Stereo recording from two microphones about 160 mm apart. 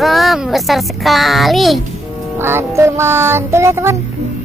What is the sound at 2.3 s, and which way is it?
Music, 15° right (ahead or behind).